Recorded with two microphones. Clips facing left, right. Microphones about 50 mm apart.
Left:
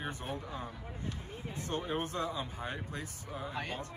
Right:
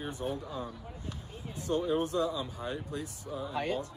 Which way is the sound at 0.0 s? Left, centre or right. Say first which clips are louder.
Right 3 dB; left.